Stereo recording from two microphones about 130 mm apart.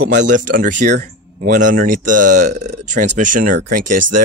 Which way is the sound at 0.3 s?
85° right.